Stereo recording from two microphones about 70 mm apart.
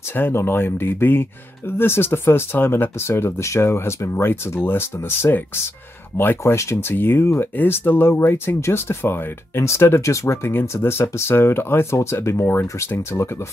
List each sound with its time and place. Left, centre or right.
0.1 s speech: left
6.4 s speech: left